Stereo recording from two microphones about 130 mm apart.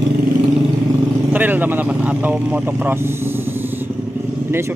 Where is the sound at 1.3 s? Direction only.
15° right (ahead or behind).